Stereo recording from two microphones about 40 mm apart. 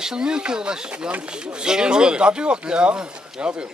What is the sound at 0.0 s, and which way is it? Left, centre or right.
Speech, centre.